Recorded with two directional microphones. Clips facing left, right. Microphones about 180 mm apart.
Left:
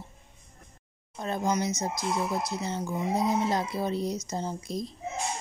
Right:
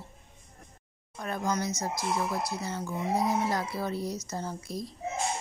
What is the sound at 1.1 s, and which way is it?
Speech, 25° left (ahead or behind).